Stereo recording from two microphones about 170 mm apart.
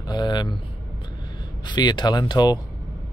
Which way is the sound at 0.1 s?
25° left (ahead or behind).